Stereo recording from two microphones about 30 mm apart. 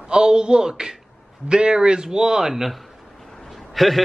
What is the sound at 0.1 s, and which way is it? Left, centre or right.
Speech, right.